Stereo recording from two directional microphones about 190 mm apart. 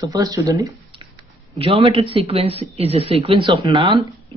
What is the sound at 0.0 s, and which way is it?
Speech, 20° right (ahead or behind).